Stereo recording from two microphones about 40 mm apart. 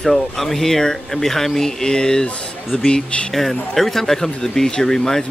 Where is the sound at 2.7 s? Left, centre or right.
Left.